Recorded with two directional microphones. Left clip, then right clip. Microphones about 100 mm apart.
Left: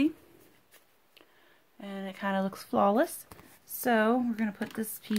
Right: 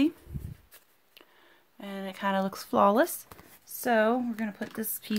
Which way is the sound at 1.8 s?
25° right (ahead or behind).